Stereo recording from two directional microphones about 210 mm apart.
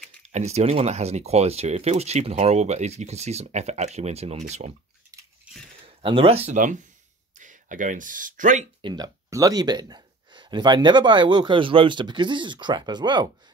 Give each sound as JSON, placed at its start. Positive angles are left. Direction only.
{"t": 0.3, "sound": "speech", "side_deg": -30}
{"t": 6.0, "sound": "speech", "side_deg": -25}
{"t": 8.8, "sound": "speech", "side_deg": -20}